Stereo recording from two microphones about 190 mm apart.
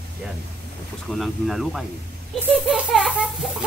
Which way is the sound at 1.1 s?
Centre (ahead or behind).